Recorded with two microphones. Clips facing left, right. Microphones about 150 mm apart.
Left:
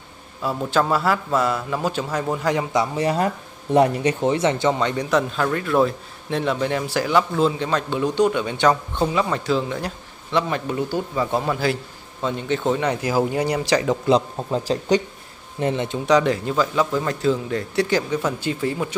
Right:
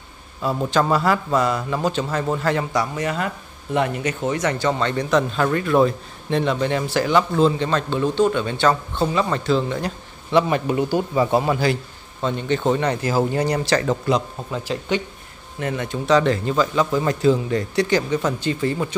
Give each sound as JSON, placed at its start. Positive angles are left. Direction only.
{"t": 0.7, "sound": "speech", "side_deg": 5}
{"t": 3.0, "sound": "a man's voice", "side_deg": 35}
{"t": 10.3, "sound": "speech", "side_deg": -15}
{"t": 11.6, "sound": "speech", "side_deg": 5}
{"t": 14.0, "sound": "a man's voice", "side_deg": 30}
{"t": 15.6, "sound": "a man's voice", "side_deg": 25}
{"t": 16.2, "sound": "speech", "side_deg": 10}